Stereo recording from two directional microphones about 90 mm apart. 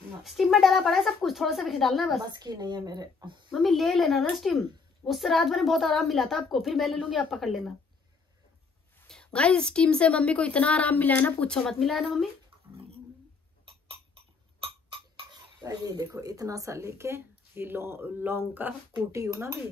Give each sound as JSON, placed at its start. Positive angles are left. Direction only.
{"t": 0.2, "sound": "a woman's voice", "side_deg": 0}
{"t": 2.2, "sound": "speech", "side_deg": -50}
{"t": 3.5, "sound": "a woman's voice", "side_deg": 0}
{"t": 9.0, "sound": "a woman's voice", "side_deg": 10}
{"t": 13.8, "sound": "a sound", "side_deg": -90}
{"t": 15.6, "sound": "speech", "side_deg": -45}
{"t": 19.1, "sound": "speech", "side_deg": -35}